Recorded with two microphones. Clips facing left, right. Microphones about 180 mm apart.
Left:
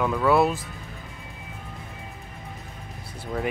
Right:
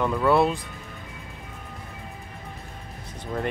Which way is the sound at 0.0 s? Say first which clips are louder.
Even; centre (ahead or behind).